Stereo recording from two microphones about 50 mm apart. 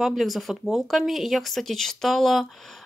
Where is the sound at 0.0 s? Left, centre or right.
Centre.